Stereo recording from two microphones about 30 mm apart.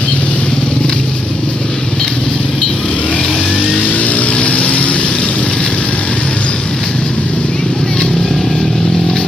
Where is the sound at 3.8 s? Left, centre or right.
Left.